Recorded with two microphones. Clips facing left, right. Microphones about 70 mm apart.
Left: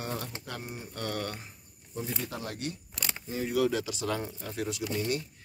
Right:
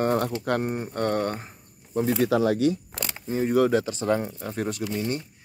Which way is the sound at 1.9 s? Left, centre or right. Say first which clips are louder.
Right 14 dB; right.